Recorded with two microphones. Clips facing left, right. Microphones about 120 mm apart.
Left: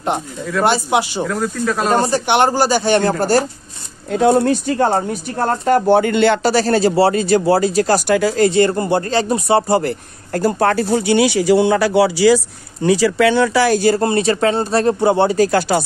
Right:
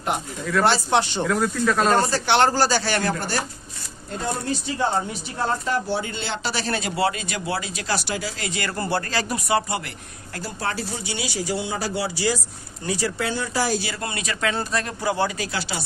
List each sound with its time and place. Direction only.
0.7 s speech: 15° left (ahead or behind)
1.9 s speech: 15° left (ahead or behind)
3.0 s speech: 35° left (ahead or behind)
4.1 s speech: 70° left (ahead or behind)
6.4 s speech: 40° left (ahead or behind)
8.5 s speech: 30° left (ahead or behind); by 13.7 s 75° left (ahead or behind)
13.7 s speech: 40° left (ahead or behind)
15.3 s speech: 50° left (ahead or behind)